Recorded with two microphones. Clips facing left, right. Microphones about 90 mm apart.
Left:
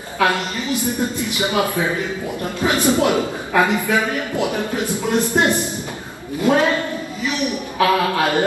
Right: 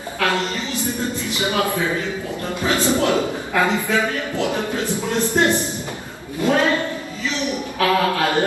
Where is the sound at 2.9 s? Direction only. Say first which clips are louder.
Left 1 dB; 20° left (ahead or behind).